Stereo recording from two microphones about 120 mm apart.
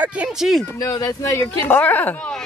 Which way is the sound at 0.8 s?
30° left (ahead or behind).